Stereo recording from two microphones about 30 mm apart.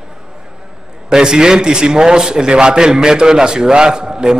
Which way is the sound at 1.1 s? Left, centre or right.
Right.